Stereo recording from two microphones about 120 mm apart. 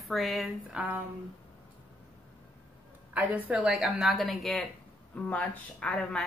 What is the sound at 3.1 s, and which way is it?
Speech, 15° right (ahead or behind).